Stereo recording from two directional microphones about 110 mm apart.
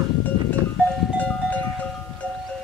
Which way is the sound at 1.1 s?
15° left (ahead or behind).